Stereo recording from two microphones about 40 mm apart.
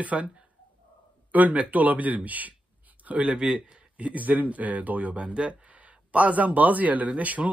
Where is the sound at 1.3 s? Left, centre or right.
Right.